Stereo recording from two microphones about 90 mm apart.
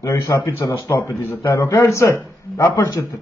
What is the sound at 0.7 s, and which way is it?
A man's voice, 40° left (ahead or behind).